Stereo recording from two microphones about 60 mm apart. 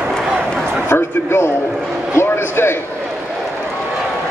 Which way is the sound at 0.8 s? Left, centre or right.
Left.